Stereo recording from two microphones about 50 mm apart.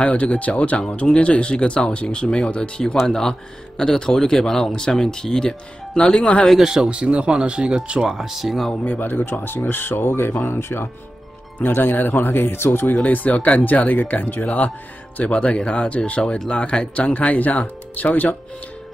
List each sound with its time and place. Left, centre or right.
0.0 s speech: left
3.1 s speech: centre
5.9 s speech: left
6.6 s speech: centre
6.9 s speech: right
8.1 s speech: centre
8.8 s speech: left
12.8 s speech: left